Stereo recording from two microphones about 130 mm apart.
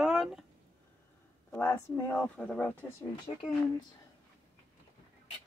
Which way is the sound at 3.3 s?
60° left (ahead or behind).